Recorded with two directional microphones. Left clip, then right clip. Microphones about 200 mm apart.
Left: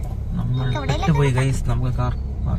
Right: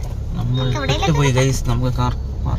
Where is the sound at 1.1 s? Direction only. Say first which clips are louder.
Right 4 dB; 50° right (ahead or behind).